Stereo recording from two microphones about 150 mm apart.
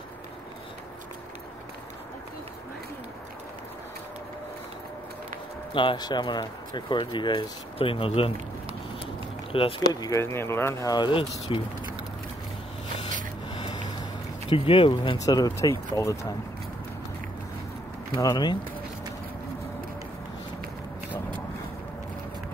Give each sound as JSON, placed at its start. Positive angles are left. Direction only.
{"t": 5.7, "sound": "speech", "side_deg": 35}
{"t": 9.5, "sound": "speech", "side_deg": 35}
{"t": 13.6, "sound": "a sound", "side_deg": 30}
{"t": 14.5, "sound": "speech", "side_deg": 35}
{"t": 18.1, "sound": "speech", "side_deg": 25}